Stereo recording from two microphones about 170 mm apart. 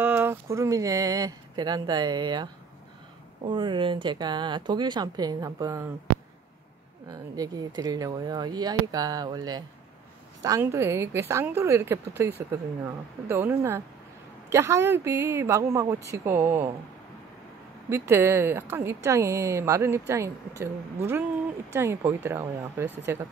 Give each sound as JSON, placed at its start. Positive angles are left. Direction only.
{"t": 0.0, "sound": "speech", "side_deg": -10}
{"t": 7.1, "sound": "speech", "side_deg": -20}
{"t": 17.8, "sound": "speech", "side_deg": -15}